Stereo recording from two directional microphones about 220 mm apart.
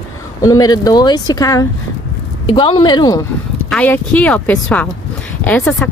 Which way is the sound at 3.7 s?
5° left (ahead or behind).